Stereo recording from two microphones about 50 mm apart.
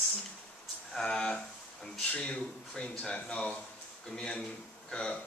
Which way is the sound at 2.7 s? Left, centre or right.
Centre.